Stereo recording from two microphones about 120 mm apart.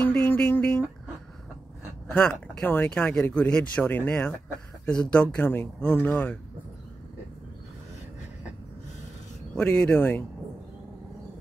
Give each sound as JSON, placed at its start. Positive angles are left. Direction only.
{"t": 0.0, "sound": "a sound", "side_deg": 15}
{"t": 2.1, "sound": "speech", "side_deg": 10}
{"t": 9.6, "sound": "speech", "side_deg": 10}